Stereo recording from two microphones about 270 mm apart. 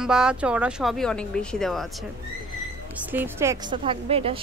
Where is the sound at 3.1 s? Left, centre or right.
Centre.